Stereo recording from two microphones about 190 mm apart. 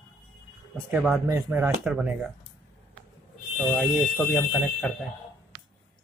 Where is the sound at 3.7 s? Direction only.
Centre (ahead or behind).